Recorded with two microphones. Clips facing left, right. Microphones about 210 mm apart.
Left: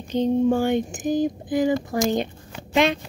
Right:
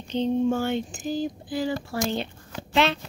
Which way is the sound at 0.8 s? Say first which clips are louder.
Left 6 dB; 20° left (ahead or behind).